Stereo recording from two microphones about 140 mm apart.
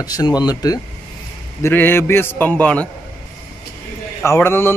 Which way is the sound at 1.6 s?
15° left (ahead or behind).